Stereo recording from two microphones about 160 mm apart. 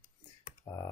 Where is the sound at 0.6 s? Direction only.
25° left (ahead or behind).